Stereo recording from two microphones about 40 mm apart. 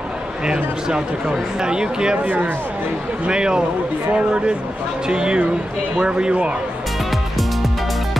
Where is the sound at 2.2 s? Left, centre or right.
Right.